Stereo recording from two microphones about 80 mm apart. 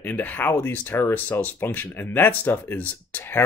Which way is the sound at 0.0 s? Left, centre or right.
Left.